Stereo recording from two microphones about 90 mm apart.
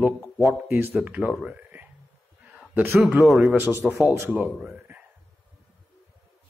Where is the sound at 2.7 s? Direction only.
30° right (ahead or behind).